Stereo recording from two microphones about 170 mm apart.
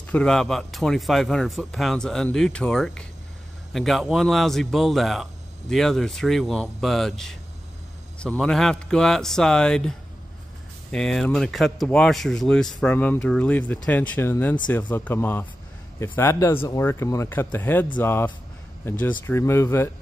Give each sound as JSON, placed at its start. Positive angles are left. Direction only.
{"t": 0.0, "sound": "speech", "side_deg": 5}